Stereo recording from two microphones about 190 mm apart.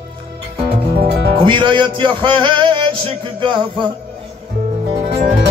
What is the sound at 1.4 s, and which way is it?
Music, 25° right (ahead or behind).